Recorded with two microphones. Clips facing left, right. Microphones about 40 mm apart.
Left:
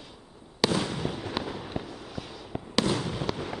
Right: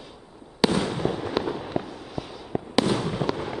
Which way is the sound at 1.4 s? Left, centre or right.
Centre.